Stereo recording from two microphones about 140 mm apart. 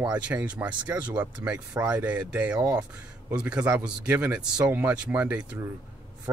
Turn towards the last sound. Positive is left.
turn(degrees=-20)  # may be behind; listen again after turning